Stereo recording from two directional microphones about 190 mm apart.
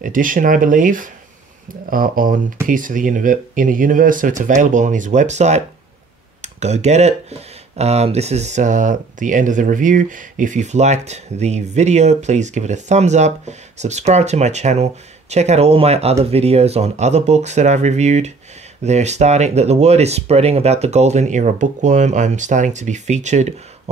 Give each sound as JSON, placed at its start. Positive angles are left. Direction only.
{"t": 0.0, "sound": "speech", "side_deg": -45}